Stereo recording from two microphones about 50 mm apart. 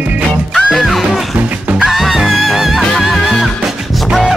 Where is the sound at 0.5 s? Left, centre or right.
Centre.